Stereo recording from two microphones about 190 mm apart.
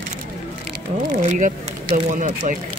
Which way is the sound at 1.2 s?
40° right (ahead or behind).